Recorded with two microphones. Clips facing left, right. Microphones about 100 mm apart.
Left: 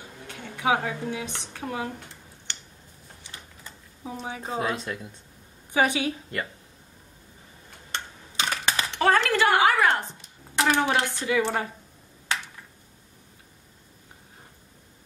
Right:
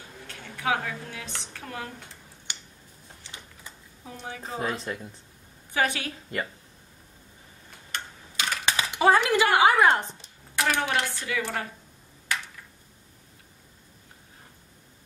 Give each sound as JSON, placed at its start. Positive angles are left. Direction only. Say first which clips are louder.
{"t": 0.3, "sound": "a woman's voice", "louder": "left 3 dB", "side_deg": 20}
{"t": 2.5, "sound": "a sound", "louder": "even", "side_deg": -10}
{"t": 4.0, "sound": "a woman's voice", "louder": "left 4 dB", "side_deg": 20}
{"t": 4.6, "sound": "speech", "louder": "left 1 dB", "side_deg": 0}
{"t": 5.7, "sound": "a woman's voice", "louder": "left 4 dB", "side_deg": 15}
{"t": 7.9, "sound": "typing", "louder": "left 2 dB", "side_deg": 30}
{"t": 8.7, "sound": "a sound", "louder": "right 2 dB", "side_deg": -15}
{"t": 10.5, "sound": "speech", "louder": "left 3 dB", "side_deg": 25}